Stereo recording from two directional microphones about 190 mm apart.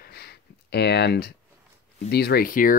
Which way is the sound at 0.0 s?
55° left (ahead or behind).